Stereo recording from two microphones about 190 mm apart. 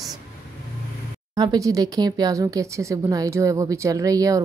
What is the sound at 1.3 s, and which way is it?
A woman's voice, 20° right (ahead or behind).